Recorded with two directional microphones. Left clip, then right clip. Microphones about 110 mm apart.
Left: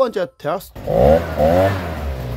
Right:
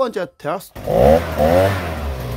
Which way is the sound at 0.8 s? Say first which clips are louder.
Right 1 dB; 65° right (ahead or behind).